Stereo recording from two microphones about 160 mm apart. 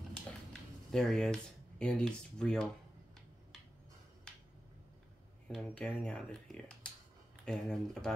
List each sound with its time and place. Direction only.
0.5 s speech: 5° left (ahead or behind)
5.5 s speech: 5° left (ahead or behind)